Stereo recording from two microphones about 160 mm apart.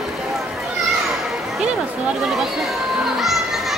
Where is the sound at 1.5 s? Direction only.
5° right (ahead or behind).